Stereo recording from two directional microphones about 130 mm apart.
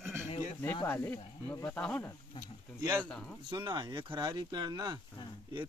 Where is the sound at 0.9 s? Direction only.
15° left (ahead or behind).